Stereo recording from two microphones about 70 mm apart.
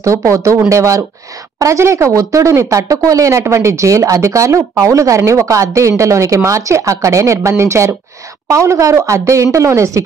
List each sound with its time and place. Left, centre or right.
0.0 s speech: right